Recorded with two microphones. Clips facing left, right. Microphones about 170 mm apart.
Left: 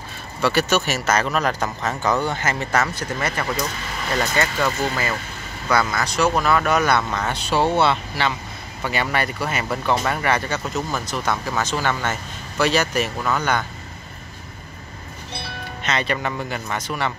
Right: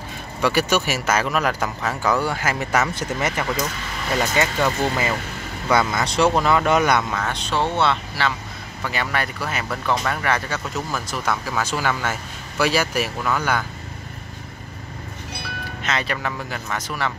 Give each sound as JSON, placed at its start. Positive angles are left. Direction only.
{"t": 0.4, "sound": "speech", "side_deg": -10}
{"t": 7.0, "sound": "speech", "side_deg": -5}
{"t": 15.8, "sound": "speech", "side_deg": 0}